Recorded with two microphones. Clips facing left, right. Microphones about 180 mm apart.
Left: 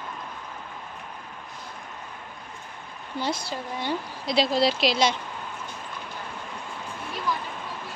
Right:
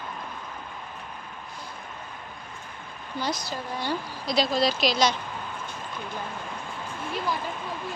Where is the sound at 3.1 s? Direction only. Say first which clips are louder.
Left 1 dB; 25° left (ahead or behind).